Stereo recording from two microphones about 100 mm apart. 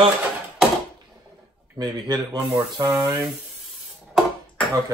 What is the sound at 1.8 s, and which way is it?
Speech, 45° right (ahead or behind).